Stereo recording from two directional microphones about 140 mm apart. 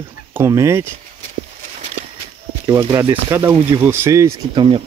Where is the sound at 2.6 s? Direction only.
25° right (ahead or behind).